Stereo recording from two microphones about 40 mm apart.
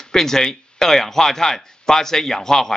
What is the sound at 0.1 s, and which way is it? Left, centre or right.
Speech, centre.